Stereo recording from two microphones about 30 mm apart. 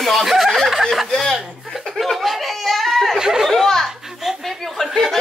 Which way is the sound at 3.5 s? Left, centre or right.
Centre.